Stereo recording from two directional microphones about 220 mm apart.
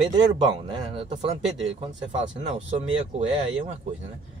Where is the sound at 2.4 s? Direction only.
30° right (ahead or behind).